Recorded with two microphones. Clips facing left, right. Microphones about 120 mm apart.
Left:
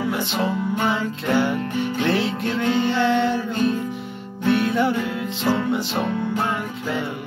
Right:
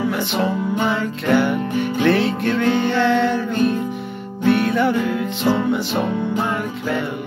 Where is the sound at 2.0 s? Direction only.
55° right (ahead or behind).